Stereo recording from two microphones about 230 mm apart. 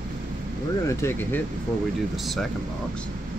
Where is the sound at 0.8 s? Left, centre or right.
Centre.